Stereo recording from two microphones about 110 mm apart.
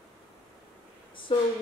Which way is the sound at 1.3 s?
50° left (ahead or behind).